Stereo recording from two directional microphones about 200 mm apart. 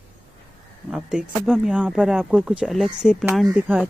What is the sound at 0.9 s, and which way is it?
Speech, centre (ahead or behind).